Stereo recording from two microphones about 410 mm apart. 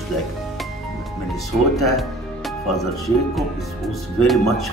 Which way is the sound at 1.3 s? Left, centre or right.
Centre.